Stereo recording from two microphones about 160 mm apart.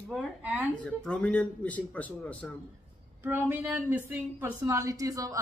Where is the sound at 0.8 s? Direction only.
5° left (ahead or behind).